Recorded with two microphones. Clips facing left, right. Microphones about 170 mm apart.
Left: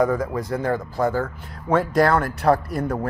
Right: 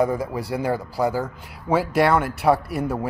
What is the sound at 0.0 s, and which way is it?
Speech, 10° right (ahead or behind).